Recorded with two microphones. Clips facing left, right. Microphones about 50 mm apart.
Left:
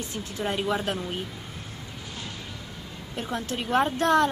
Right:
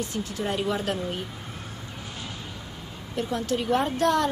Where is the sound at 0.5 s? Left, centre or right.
Left.